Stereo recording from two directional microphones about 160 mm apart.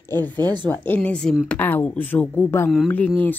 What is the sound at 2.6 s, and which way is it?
Speech, centre (ahead or behind).